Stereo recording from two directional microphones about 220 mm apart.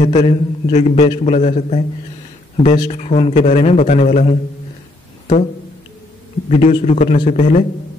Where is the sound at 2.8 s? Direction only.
25° left (ahead or behind).